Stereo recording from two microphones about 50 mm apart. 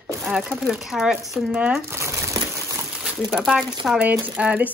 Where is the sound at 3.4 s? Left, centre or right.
Centre.